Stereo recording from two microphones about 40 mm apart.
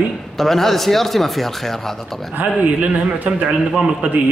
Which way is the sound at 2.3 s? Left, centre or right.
Right.